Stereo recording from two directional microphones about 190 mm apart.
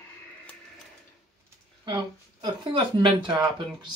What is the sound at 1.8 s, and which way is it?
Speech, 25° right (ahead or behind).